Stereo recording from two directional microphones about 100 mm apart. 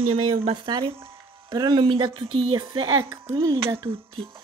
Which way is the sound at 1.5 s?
45° right (ahead or behind).